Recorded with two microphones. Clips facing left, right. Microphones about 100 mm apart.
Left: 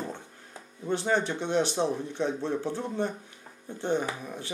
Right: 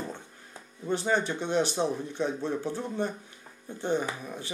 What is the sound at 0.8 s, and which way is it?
Speech, 5° right (ahead or behind).